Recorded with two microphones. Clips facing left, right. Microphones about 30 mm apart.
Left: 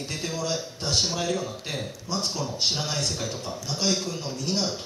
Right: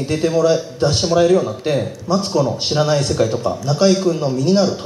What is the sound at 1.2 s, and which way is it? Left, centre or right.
Speech, right.